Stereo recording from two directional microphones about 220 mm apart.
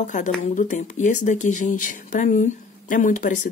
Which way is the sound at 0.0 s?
35° left (ahead or behind).